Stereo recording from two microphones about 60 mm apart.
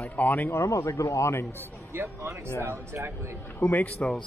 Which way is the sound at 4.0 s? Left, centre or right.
Centre.